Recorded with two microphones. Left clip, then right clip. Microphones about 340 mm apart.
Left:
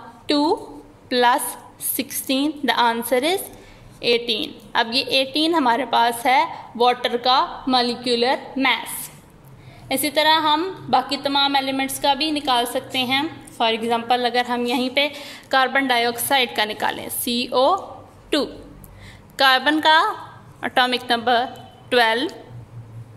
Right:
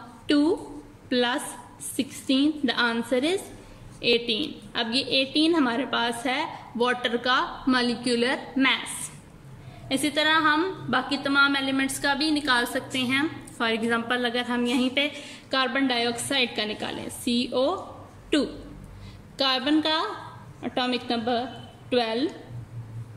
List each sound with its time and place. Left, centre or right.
1.0 s a woman's voice: centre